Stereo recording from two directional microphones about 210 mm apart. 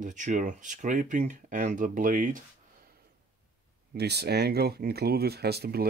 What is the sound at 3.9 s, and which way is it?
Speech, 50° right (ahead or behind).